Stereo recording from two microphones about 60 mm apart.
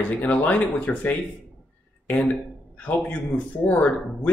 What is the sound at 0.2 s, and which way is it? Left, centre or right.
Speech, left.